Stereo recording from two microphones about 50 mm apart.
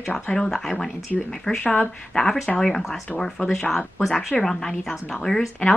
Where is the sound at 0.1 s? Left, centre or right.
Centre.